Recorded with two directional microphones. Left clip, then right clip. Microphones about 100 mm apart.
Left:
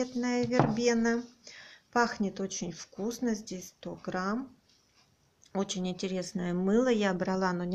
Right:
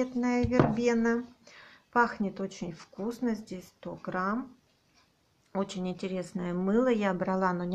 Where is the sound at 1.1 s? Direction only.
25° left (ahead or behind).